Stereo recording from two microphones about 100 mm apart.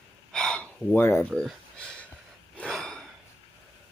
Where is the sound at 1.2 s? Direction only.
10° left (ahead or behind).